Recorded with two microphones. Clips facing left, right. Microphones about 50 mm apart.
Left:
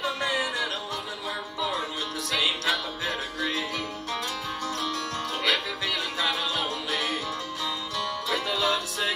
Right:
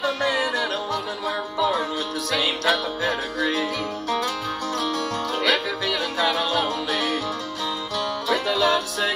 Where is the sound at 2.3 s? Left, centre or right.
Right.